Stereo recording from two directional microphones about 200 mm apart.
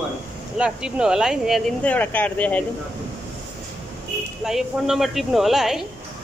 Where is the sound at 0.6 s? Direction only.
5° right (ahead or behind).